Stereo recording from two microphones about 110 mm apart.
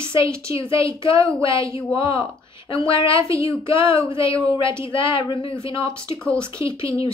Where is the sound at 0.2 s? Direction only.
25° right (ahead or behind).